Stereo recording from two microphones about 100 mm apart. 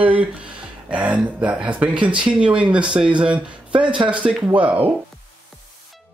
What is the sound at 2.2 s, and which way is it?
Speech, 10° right (ahead or behind).